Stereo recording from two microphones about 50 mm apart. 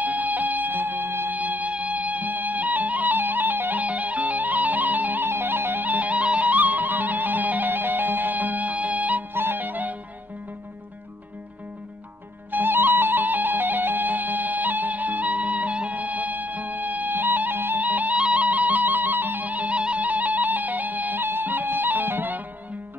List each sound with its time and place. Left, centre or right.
0.0 s music: right
1.4 s music: right
5.2 s music: right
9.3 s music: right
12.4 s music: right